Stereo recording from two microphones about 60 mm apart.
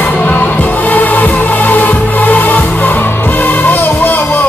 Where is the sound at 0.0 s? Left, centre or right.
Left.